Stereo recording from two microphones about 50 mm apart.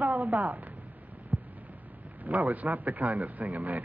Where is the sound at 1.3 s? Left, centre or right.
Centre.